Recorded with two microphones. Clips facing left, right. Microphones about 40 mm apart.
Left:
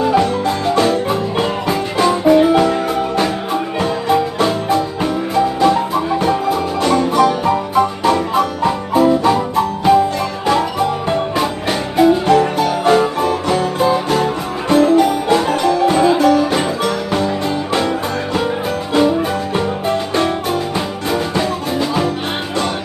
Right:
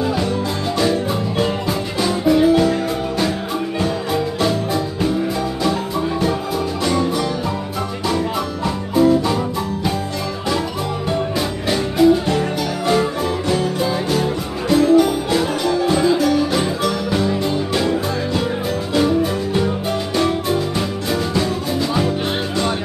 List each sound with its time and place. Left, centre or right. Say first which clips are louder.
0.0 s music: left 6 dB; left
1.4 s music: left 3 dB; left
6.8 s music: left 7 dB; left
15.3 s music: left 4 dB; left